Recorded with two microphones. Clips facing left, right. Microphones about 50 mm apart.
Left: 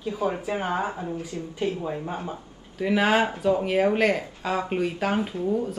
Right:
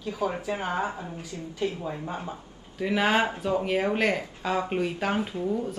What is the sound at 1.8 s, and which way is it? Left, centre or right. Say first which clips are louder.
Speech: left 3 dB; centre.